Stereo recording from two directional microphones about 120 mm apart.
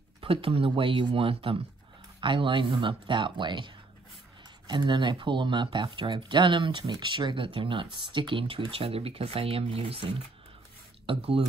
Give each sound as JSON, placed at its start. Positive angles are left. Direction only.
{"t": 0.2, "sound": "speech", "side_deg": -50}
{"t": 11.1, "sound": "speech", "side_deg": -50}